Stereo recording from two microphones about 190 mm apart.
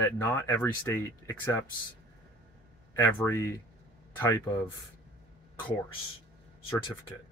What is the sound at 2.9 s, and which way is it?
Speech, 10° left (ahead or behind).